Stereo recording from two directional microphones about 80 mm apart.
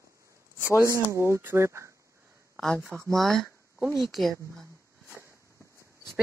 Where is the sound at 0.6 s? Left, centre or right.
Left.